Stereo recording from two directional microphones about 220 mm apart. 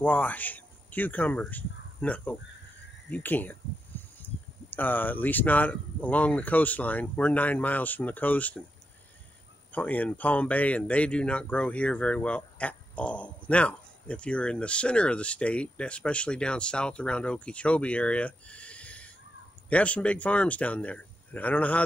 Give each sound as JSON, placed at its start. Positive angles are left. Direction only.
{"t": 0.0, "sound": "speech", "side_deg": 5}
{"t": 9.7, "sound": "speech", "side_deg": 5}